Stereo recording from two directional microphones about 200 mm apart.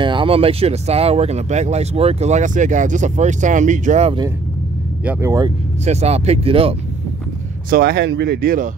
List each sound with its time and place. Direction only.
0.0 s speech: 25° right (ahead or behind)
5.0 s speech: 15° right (ahead or behind)
5.9 s speech: 30° right (ahead or behind)
7.7 s speech: 55° right (ahead or behind)